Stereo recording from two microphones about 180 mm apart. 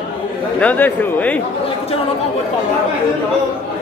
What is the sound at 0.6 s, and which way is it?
Speech, 10° left (ahead or behind).